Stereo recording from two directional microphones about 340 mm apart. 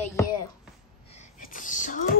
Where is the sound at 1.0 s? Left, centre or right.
Centre.